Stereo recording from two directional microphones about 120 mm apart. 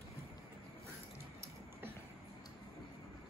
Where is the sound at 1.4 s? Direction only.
20° right (ahead or behind).